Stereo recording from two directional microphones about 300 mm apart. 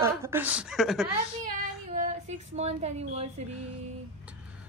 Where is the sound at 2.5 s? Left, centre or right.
Right.